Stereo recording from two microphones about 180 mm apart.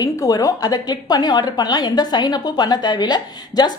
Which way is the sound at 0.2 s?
20° left (ahead or behind).